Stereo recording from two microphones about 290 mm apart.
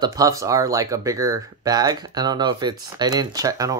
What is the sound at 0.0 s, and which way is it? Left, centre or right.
Speech, centre.